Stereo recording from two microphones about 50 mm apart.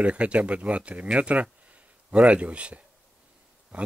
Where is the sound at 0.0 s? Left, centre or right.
Right.